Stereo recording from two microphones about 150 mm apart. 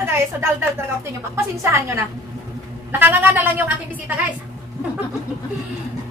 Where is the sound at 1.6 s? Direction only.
20° right (ahead or behind).